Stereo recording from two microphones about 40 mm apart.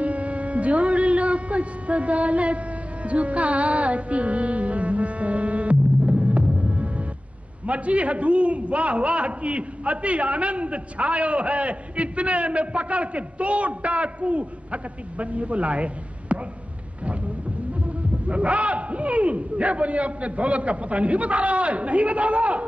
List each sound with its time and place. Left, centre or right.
0.0 s music: right
7.6 s a man's voice: right
17.8 s a man's voice: right